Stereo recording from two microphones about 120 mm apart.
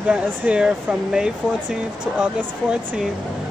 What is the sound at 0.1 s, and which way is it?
Speech, 10° right (ahead or behind).